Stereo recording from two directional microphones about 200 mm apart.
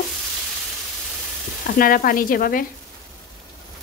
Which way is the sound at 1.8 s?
45° left (ahead or behind).